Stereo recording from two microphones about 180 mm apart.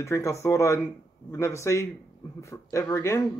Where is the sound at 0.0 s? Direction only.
15° left (ahead or behind).